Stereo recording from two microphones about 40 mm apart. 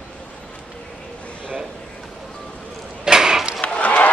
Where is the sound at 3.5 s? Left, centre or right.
Left.